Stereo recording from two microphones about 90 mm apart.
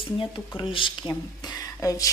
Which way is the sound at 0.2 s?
75° left (ahead or behind).